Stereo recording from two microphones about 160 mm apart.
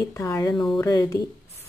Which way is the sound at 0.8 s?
20° left (ahead or behind).